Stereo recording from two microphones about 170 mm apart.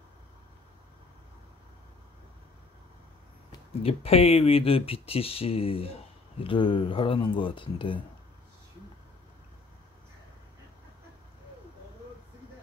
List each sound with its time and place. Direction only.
3.8 s speech: 35° left (ahead or behind)